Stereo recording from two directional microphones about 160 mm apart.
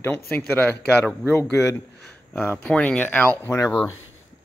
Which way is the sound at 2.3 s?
15° left (ahead or behind).